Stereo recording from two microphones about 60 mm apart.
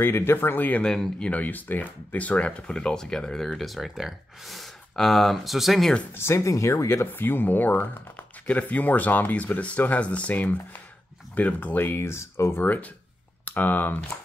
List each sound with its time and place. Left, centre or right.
0.0 s speech: left
0.8 s speech: centre
1.3 s speech: left; by 5.9 s centre
6.1 s speech: left
7.1 s speech: left
11.8 s speech: left
12.5 s speech: left